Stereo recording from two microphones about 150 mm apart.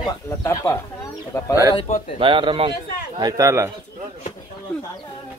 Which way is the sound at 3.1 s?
25° right (ahead or behind).